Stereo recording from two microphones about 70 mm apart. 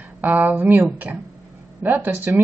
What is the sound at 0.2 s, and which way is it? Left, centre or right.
A woman's voice, right.